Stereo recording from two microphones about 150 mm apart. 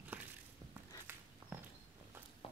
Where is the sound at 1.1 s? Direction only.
15° right (ahead or behind).